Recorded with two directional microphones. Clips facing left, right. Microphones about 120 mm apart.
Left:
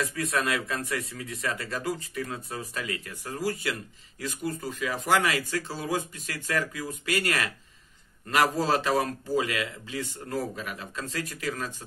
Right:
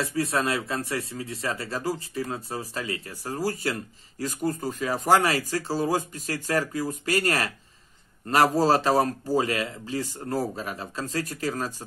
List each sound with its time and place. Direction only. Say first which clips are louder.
0.0 s speech: right 3 dB; 30° right (ahead or behind)